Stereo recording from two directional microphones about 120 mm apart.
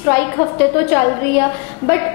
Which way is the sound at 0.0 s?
25° left (ahead or behind).